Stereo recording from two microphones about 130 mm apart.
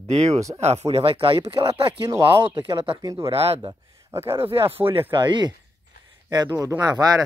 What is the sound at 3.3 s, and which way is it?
Speech, 50° right (ahead or behind).